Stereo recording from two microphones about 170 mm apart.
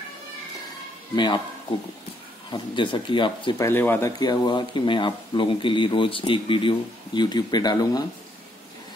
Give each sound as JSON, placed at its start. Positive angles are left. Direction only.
{"t": 1.1, "sound": "speech", "side_deg": 25}
{"t": 2.5, "sound": "speech", "side_deg": 30}
{"t": 3.5, "sound": "speech", "side_deg": 15}